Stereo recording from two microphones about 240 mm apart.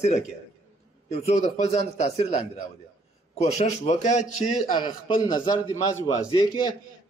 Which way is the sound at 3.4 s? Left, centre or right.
Left.